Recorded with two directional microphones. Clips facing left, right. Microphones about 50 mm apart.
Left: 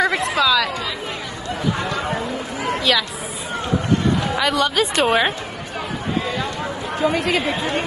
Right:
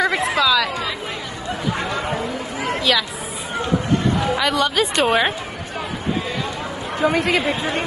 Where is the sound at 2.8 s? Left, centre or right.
Centre.